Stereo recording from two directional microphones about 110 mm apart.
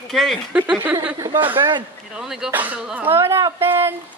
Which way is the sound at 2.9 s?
20° right (ahead or behind).